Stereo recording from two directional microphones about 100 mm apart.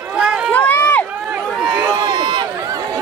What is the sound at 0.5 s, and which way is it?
Run, 15° left (ahead or behind).